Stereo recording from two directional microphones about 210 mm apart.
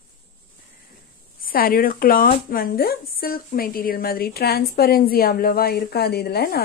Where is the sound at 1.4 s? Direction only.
45° left (ahead or behind).